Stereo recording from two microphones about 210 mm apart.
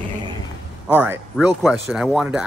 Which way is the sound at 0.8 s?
10° right (ahead or behind).